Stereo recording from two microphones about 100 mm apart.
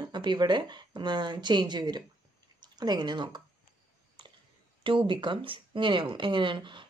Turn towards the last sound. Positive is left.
turn(degrees=-55)  # may be behind; listen again after turning